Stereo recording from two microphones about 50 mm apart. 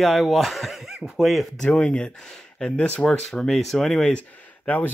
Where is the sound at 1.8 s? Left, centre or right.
Centre.